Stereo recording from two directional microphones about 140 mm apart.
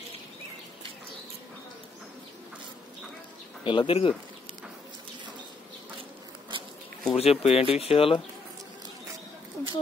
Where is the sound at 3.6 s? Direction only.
35° left (ahead or behind).